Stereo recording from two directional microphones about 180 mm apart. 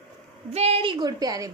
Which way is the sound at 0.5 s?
35° right (ahead or behind).